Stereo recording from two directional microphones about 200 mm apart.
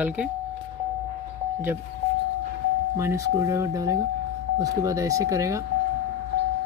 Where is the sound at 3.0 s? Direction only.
15° right (ahead or behind).